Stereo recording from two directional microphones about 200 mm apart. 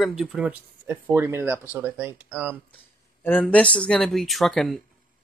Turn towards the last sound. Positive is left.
turn(degrees=0)  # may be behind; listen again after turning